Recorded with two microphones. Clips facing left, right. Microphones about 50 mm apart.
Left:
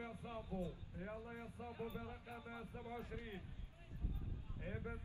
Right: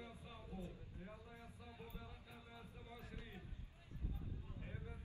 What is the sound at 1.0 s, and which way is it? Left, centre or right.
A man's voice, left.